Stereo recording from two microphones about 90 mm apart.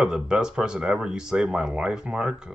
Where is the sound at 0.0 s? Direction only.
10° right (ahead or behind).